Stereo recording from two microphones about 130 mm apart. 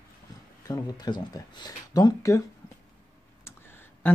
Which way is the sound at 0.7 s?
35° left (ahead or behind).